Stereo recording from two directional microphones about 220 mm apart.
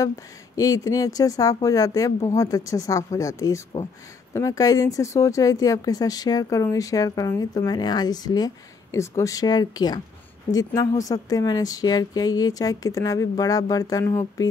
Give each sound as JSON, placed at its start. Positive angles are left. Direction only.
{"t": 0.8, "sound": "speech", "side_deg": 15}